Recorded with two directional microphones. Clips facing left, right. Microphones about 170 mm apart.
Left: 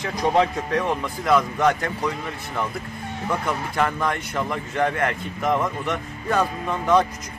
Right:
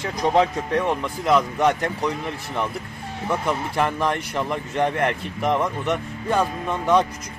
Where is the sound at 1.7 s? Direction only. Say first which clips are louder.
Right 2 dB; 30° right (ahead or behind).